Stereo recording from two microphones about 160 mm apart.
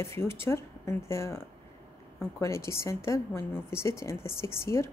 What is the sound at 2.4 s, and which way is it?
A woman's voice, 15° left (ahead or behind).